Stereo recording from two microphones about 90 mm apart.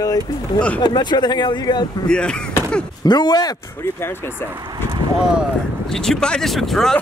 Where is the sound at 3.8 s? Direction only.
25° left (ahead or behind).